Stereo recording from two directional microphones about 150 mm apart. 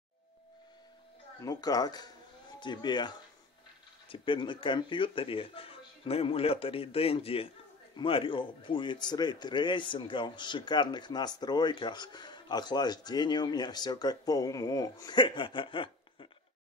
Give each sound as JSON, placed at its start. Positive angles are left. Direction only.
{"t": 1.4, "sound": "speech", "side_deg": 25}
{"t": 4.1, "sound": "speech", "side_deg": 35}